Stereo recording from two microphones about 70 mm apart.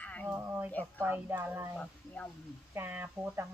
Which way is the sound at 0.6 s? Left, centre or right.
Left.